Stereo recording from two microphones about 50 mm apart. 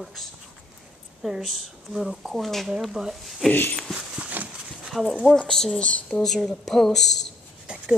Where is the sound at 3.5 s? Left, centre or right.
Left.